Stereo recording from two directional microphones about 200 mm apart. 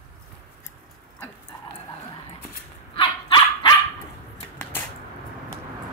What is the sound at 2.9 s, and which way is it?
Dog, 25° left (ahead or behind).